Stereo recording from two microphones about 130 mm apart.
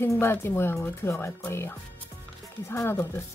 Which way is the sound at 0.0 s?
20° left (ahead or behind).